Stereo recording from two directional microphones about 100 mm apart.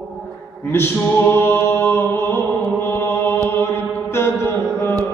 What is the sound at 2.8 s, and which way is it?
Mantra, 25° left (ahead or behind).